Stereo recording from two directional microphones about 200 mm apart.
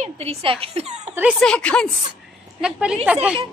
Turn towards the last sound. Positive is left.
turn(degrees=-5)  # may be behind; listen again after turning